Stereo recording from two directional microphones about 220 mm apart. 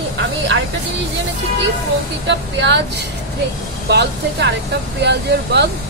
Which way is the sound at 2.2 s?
50° right (ahead or behind).